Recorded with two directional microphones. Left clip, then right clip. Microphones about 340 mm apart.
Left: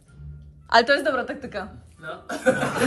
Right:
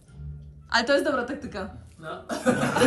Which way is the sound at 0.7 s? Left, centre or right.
Centre.